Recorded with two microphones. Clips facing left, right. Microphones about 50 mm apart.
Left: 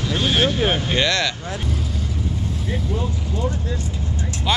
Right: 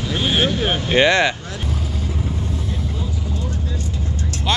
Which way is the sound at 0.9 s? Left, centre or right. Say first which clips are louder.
Right 5 dB; right.